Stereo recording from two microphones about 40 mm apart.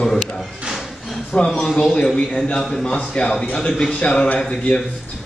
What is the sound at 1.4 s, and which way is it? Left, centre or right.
Speech, centre.